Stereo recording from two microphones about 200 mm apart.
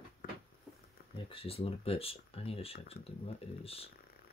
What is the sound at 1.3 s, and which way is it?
Speech, 30° left (ahead or behind).